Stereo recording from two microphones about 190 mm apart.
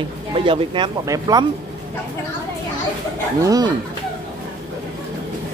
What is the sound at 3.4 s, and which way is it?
Speech, 20° right (ahead or behind).